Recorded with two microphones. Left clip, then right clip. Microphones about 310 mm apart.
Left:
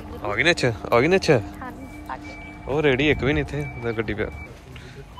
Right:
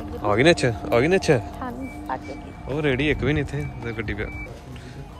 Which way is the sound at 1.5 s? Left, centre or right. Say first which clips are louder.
Right 4 dB; right.